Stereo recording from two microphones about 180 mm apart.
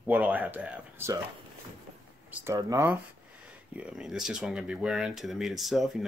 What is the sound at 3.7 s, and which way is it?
Speech, 5° right (ahead or behind).